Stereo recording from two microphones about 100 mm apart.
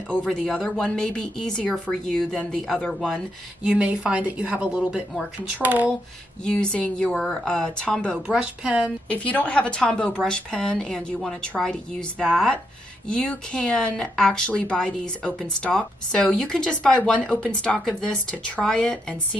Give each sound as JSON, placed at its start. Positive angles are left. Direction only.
{"t": 0.1, "sound": "speech", "side_deg": 10}
{"t": 3.6, "sound": "a woman's voice", "side_deg": -10}
{"t": 6.4, "sound": "a woman's voice", "side_deg": 10}
{"t": 8.3, "sound": "a woman's voice", "side_deg": -10}
{"t": 9.1, "sound": "a woman's voice", "side_deg": 15}